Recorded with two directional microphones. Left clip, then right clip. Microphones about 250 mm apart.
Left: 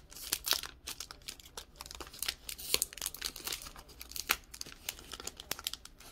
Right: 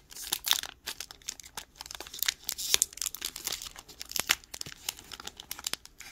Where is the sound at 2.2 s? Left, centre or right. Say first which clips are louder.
Right 8 dB; centre.